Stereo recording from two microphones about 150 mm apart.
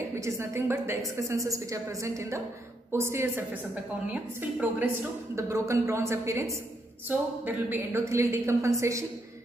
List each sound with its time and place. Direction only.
0.2 s a woman's voice: 20° right (ahead or behind)